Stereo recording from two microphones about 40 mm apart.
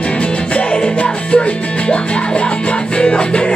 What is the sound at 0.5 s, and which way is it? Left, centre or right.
Music, left.